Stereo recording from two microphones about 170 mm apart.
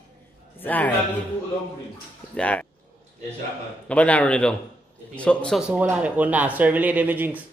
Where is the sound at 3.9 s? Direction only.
5° left (ahead or behind); by 7.4 s 10° right (ahead or behind).